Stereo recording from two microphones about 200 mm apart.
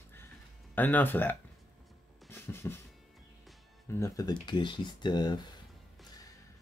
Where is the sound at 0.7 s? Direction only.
10° left (ahead or behind).